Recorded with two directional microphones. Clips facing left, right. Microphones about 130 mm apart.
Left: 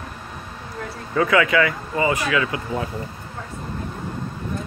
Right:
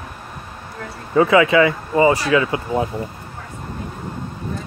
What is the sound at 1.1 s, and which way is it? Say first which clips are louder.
Speech: right 5 dB; 25° right (ahead or behind).